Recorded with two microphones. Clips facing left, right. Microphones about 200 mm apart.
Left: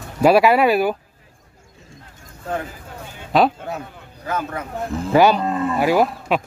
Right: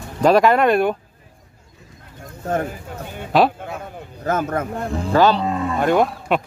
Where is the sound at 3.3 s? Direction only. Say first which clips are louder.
Even; centre (ahead or behind).